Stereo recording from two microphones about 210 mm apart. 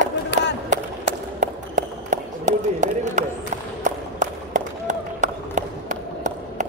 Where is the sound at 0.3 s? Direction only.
55° left (ahead or behind).